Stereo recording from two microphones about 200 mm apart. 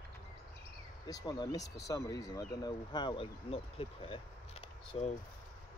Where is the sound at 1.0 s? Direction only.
20° left (ahead or behind).